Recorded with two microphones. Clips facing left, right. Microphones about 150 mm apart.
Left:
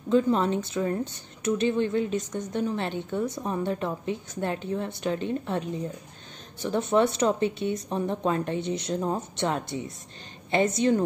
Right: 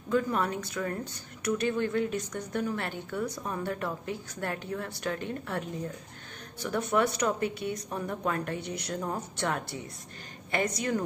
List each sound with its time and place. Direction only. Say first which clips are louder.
0.1 s speech: left 6 dB; 25° left (ahead or behind)